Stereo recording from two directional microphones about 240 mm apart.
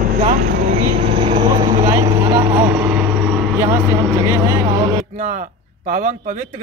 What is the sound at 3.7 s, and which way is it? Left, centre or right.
Speech, centre.